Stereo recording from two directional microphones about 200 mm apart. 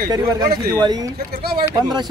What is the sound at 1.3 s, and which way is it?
Speech, 50° right (ahead or behind).